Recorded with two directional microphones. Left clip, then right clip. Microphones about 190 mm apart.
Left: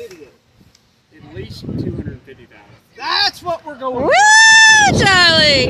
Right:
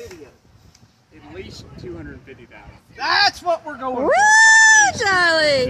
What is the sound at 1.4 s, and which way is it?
Speech, 10° right (ahead or behind).